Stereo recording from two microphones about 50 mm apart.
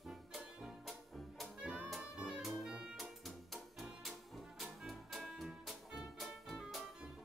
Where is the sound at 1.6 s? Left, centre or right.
Centre.